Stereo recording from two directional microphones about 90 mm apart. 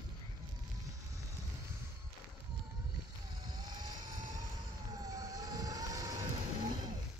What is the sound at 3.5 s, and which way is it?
Vehicle, 50° right (ahead or behind).